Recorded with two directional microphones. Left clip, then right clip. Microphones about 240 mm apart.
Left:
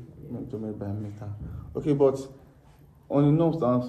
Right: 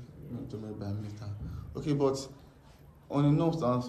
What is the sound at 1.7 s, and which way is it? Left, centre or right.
A man's voice, centre.